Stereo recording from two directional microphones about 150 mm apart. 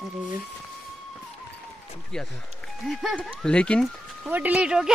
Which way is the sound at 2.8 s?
Centre (ahead or behind).